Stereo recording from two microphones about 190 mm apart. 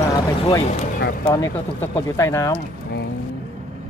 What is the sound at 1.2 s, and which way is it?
Speech, 15° left (ahead or behind).